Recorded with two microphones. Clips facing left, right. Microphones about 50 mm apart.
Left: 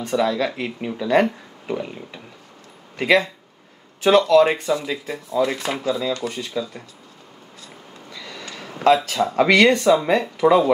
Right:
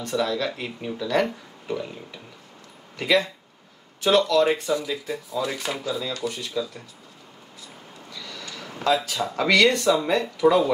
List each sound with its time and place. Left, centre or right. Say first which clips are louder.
0.0 s speech: left 4 dB; left
3.0 s speech: left 4 dB; left
4.3 s speech: left 5 dB; left
8.1 s a sound: left 2 dB; left
8.8 s speech: left 6 dB; left
9.2 s speech: left 3 dB; left